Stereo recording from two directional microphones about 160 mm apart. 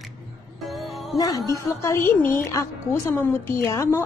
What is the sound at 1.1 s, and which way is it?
A woman's voice, 25° left (ahead or behind).